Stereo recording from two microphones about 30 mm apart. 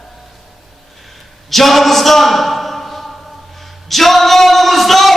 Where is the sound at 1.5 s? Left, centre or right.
Centre.